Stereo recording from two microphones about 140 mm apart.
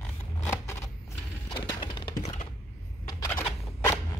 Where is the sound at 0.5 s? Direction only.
20° left (ahead or behind).